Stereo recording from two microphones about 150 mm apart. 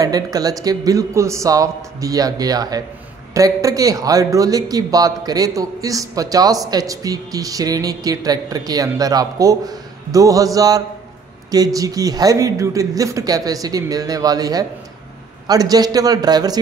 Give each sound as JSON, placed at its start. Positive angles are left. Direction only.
{"t": 0.0, "sound": "speech", "side_deg": -25}